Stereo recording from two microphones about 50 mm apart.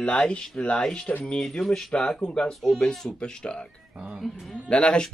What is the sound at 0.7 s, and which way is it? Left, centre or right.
Speech, centre.